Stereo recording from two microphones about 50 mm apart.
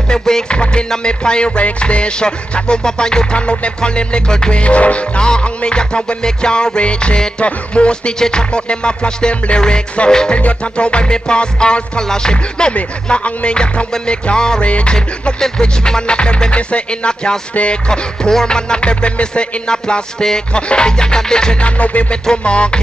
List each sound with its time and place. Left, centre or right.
0.1 s music: centre